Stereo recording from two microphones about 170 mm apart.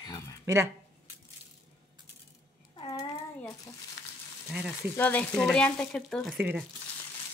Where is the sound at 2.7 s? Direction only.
25° left (ahead or behind).